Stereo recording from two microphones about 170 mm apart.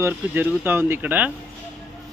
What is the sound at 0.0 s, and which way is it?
Speech, 15° right (ahead or behind).